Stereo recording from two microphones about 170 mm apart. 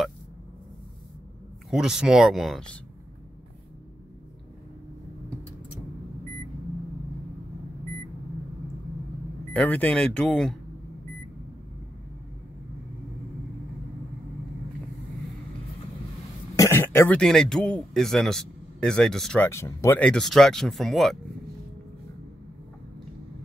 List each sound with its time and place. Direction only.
1.7 s a man's voice: 5° right (ahead or behind)
9.5 s speech: 10° left (ahead or behind)
16.5 s cough: 15° left (ahead or behind)
17.2 s a man's voice: 5° left (ahead or behind)
20.1 s a man's voice: centre (ahead or behind)